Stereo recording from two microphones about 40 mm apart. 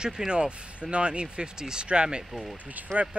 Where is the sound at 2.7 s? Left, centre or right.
Right.